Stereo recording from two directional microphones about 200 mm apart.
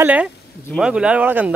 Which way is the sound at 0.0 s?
5° right (ahead or behind).